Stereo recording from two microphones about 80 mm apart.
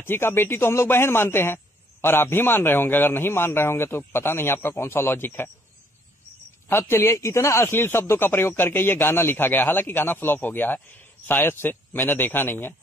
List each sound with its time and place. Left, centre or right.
0.0 s speech: left
6.7 s speech: left